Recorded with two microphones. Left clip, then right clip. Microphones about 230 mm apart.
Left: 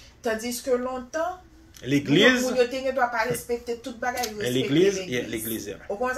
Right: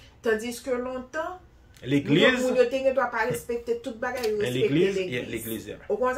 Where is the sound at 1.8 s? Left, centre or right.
Centre.